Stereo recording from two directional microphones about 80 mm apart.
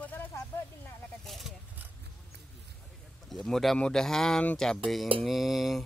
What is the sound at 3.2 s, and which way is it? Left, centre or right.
Speech, centre.